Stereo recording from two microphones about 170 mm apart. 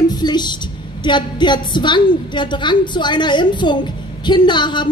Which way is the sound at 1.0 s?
25° left (ahead or behind).